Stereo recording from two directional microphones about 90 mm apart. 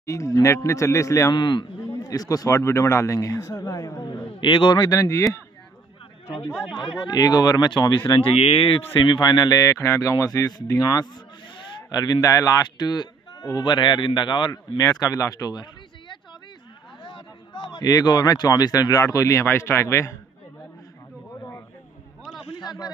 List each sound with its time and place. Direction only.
0.0 s speech: 35° left (ahead or behind)
1.3 s speech: 55° left (ahead or behind)
2.0 s speech: 40° left (ahead or behind)
4.3 s speech: 65° left (ahead or behind)
4.7 s speech: 40° left (ahead or behind)
6.5 s speech: centre (ahead or behind)
7.0 s speech: 45° left (ahead or behind)
8.2 s speech: 90° left
8.9 s speech: 60° left (ahead or behind)
14.8 s speech: 40° left (ahead or behind)
17.0 s a sound: 65° left (ahead or behind)
17.8 s speech: 45° left (ahead or behind)
21.4 s a sound: 30° left (ahead or behind)
22.6 s a sound: 50° left (ahead or behind)